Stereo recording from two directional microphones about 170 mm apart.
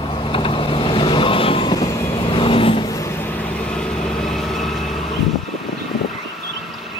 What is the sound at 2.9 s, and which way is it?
Vehicle, 15° left (ahead or behind).